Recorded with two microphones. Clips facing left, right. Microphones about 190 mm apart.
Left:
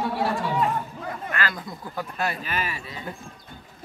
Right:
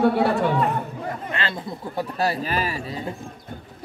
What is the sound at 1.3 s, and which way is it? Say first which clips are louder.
Speech: right 1 dB; 25° right (ahead or behind).